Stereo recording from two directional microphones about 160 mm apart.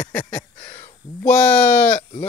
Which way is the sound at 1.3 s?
10° left (ahead or behind).